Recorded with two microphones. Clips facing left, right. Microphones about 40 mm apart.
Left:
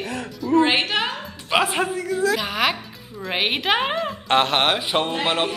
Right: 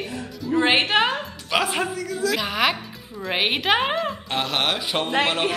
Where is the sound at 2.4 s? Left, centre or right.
Centre.